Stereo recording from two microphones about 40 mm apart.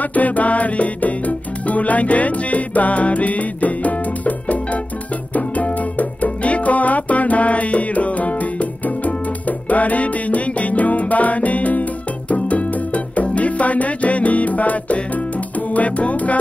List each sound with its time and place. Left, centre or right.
0.0 s music: left